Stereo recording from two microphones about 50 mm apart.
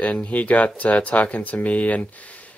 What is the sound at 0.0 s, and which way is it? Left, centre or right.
Speech, left.